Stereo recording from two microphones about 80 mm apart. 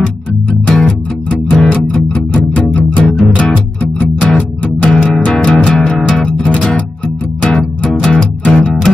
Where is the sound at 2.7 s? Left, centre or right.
Centre.